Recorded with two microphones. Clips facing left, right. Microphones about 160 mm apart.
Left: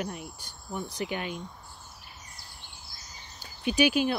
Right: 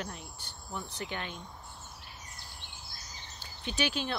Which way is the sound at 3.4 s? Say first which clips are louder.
Left 9 dB; 10° left (ahead or behind).